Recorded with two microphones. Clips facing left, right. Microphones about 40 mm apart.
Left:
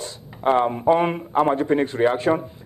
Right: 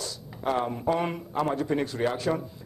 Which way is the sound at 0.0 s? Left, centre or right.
Left.